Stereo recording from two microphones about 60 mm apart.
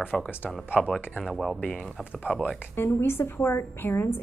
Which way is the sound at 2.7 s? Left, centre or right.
Left.